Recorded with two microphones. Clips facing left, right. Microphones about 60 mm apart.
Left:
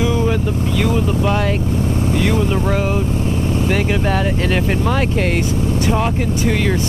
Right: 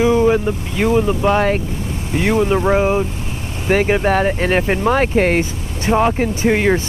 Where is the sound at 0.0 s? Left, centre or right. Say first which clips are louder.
Right 4 dB; right.